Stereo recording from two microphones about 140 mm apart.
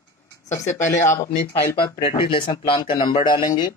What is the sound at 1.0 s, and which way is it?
Speech, 15° left (ahead or behind).